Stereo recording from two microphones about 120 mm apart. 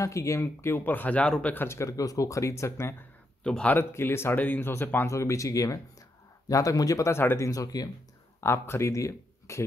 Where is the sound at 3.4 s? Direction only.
10° left (ahead or behind); by 7.9 s 30° left (ahead or behind).